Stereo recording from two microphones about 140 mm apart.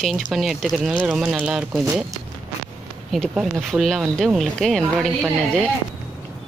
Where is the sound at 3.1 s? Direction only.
Centre (ahead or behind).